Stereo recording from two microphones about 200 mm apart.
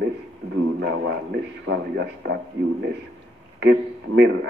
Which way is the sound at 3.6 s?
60° right (ahead or behind).